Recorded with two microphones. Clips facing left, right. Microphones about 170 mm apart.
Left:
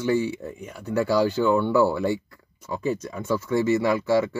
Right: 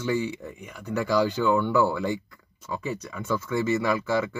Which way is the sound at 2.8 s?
40° left (ahead or behind).